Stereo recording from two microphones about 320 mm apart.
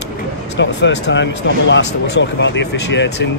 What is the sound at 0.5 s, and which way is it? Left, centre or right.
Speech, left.